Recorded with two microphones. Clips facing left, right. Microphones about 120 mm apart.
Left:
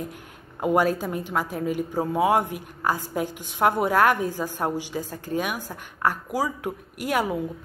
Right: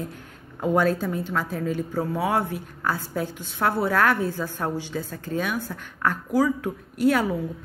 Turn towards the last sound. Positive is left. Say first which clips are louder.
# right 4 dB
turn(degrees=15)  # may be behind; listen again after turning